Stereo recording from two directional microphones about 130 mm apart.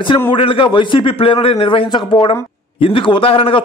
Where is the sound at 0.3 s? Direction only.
45° left (ahead or behind).